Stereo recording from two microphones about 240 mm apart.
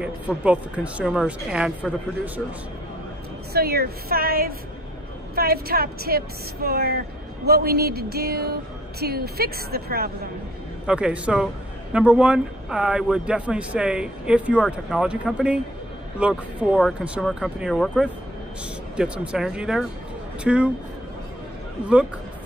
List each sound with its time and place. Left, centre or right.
0.0 s speech: centre
3.5 s speech: right
10.9 s speech: centre